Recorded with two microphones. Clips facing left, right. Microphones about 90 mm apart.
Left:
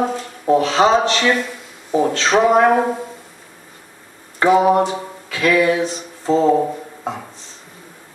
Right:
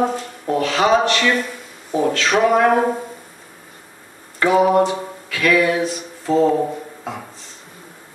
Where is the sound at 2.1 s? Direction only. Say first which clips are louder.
Left 2 dB; 25° left (ahead or behind).